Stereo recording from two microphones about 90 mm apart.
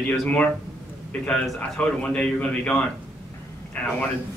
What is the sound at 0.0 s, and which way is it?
Speech, 15° left (ahead or behind).